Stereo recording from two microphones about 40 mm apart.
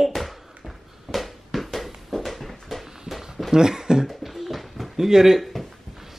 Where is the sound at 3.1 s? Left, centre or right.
Centre.